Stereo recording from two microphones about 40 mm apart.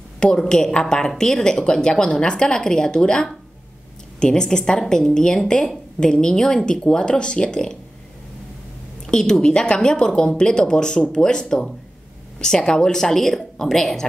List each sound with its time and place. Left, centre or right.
0.2 s a woman's voice: centre
5.9 s a woman's voice: left
9.0 s a woman's voice: centre